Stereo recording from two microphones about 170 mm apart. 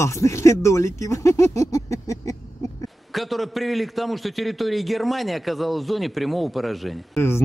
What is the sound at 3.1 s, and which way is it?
A man's voice, centre (ahead or behind).